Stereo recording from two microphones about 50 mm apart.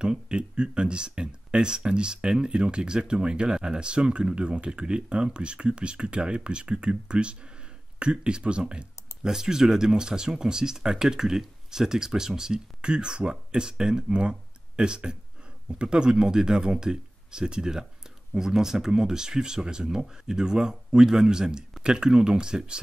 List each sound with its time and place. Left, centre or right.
0.0 s speech: centre